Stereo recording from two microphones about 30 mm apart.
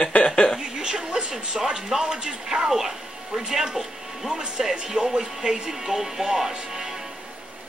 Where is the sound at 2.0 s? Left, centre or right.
Right.